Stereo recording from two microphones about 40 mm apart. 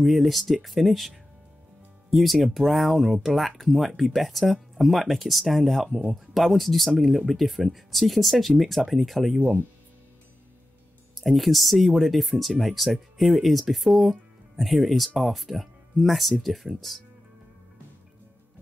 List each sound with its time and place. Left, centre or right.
0.0 s speech: centre
2.0 s music: centre
2.4 s speech: centre
9.4 s speech: right
11.1 s speech: centre